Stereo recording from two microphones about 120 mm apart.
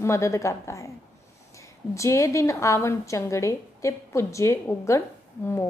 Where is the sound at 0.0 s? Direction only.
25° left (ahead or behind).